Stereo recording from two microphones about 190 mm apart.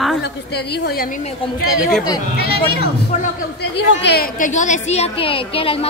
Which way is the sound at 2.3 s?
55° left (ahead or behind).